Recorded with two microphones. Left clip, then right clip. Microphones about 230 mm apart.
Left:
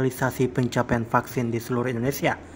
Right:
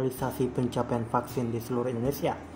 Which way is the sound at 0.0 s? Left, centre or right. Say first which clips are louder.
Left 5 dB; left.